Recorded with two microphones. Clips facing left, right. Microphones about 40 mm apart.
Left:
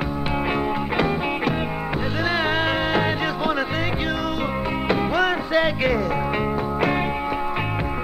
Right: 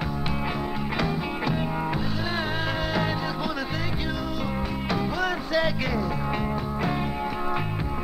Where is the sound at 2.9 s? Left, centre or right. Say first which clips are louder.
Left 5 dB; left.